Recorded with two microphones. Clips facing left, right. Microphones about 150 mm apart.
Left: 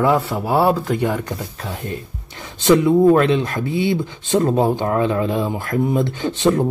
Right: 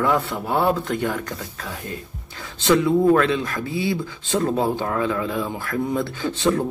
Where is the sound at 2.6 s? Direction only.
20° left (ahead or behind).